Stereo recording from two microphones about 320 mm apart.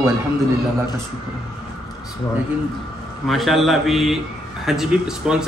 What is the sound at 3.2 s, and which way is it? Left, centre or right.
A man's voice, centre.